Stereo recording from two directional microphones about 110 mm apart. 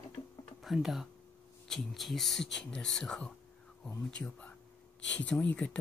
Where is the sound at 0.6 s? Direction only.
Centre (ahead or behind).